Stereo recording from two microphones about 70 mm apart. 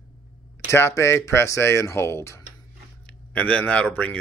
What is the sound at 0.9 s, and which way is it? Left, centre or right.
Speech, left.